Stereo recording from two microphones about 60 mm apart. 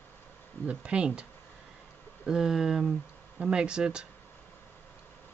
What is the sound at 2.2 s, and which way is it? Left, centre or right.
Speech, centre.